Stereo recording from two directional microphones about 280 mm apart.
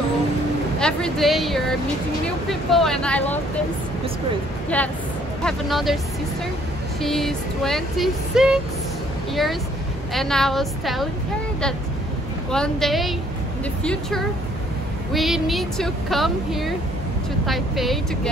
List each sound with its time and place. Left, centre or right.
0.7 s speech: centre
4.7 s speech: centre
7.0 s speech: centre
12.4 s speech: centre
15.1 s speech: centre